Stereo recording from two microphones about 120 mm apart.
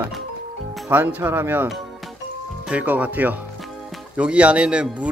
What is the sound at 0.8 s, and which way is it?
Speech, 15° right (ahead or behind).